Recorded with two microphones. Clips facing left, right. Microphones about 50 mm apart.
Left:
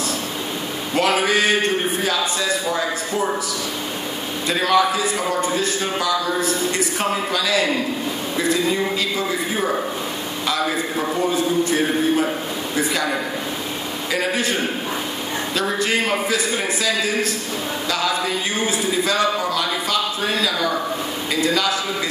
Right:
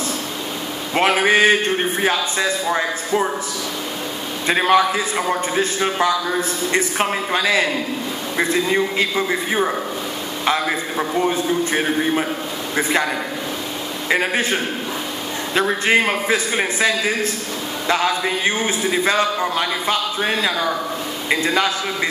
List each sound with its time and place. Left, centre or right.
0.9 s a man's voice: right
4.5 s a man's voice: right
8.9 s a man's voice: right
11.0 s a man's voice: right
14.1 s a man's voice: right
15.8 s a man's voice: right